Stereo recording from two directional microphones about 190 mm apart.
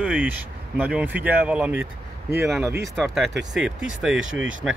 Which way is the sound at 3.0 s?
Centre (ahead or behind).